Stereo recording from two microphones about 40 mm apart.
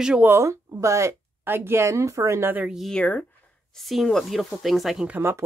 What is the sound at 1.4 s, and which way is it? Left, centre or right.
Speech, right.